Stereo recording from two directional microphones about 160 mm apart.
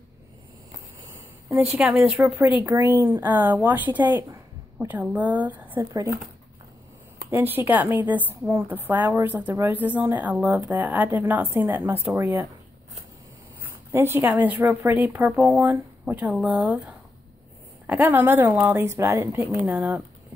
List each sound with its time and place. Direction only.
0.7 s a sound: 20° right (ahead or behind)
1.8 s a woman's voice: 10° right (ahead or behind)
7.2 s a woman's voice: 15° right (ahead or behind)
13.9 s a woman's voice: 15° right (ahead or behind)